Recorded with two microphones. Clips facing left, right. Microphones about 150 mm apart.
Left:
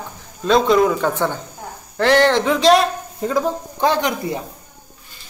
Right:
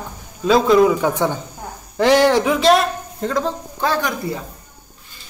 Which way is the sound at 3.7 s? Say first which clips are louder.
Left 3 dB; 20° left (ahead or behind).